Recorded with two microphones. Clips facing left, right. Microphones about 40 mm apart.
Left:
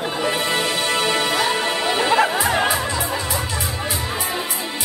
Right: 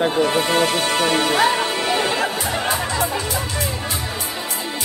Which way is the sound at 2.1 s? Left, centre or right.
Centre.